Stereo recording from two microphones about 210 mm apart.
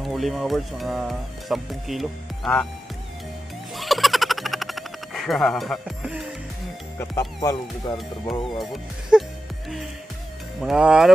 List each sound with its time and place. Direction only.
0.0 s speech: centre (ahead or behind)
3.7 s a sound: centre (ahead or behind)
7.0 s speech: 15° left (ahead or behind)
8.3 s speech: centre (ahead or behind)
10.6 s speech: 5° right (ahead or behind)